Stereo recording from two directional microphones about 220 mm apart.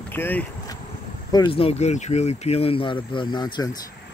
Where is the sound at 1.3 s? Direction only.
20° left (ahead or behind).